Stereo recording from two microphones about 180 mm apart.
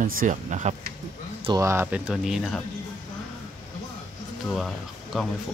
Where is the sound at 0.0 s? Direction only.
50° right (ahead or behind).